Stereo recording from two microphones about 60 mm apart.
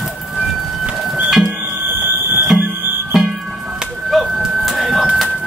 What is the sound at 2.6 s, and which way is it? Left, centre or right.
Music, right.